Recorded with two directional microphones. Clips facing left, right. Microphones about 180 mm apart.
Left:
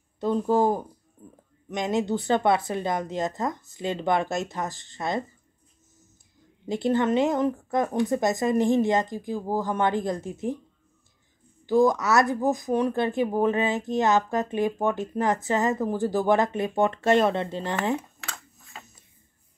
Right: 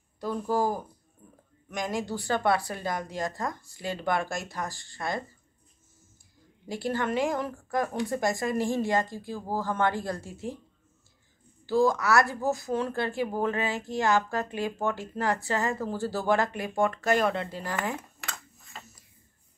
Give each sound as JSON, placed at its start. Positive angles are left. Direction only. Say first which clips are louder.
{"t": 0.2, "sound": "speech", "louder": "left 5 dB", "side_deg": 25}
{"t": 1.2, "sound": "a sound", "louder": "left 7 dB", "side_deg": 25}
{"t": 1.7, "sound": "speech", "louder": "left 6 dB", "side_deg": 20}
{"t": 6.7, "sound": "speech", "louder": "left 6 dB", "side_deg": 20}
{"t": 11.6, "sound": "speech", "louder": "left 3 dB", "side_deg": 20}
{"t": 18.8, "sound": "a sound", "louder": "left 1 dB", "side_deg": 20}